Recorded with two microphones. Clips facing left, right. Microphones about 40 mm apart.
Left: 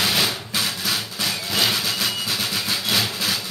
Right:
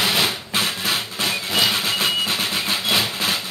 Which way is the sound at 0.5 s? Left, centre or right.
Right.